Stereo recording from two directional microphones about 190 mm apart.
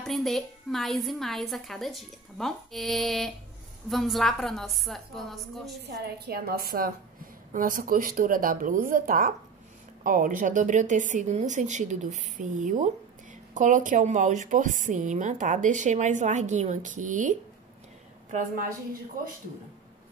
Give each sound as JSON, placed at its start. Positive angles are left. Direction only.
{"t": 0.0, "sound": "a woman's voice", "side_deg": 0}
{"t": 6.1, "sound": "a woman's voice", "side_deg": -55}